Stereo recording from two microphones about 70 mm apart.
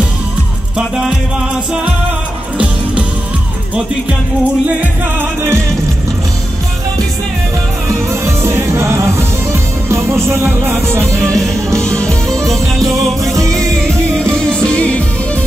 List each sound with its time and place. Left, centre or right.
0.7 s music: centre
8.1 s music: right
11.8 s music: centre
12.5 s music: right
14.7 s music: centre